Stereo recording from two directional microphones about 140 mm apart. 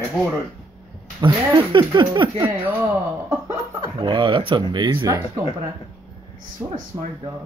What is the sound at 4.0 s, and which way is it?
Speech, 35° right (ahead or behind).